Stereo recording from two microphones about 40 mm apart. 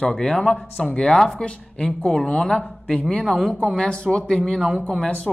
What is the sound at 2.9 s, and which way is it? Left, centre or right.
Speech, left.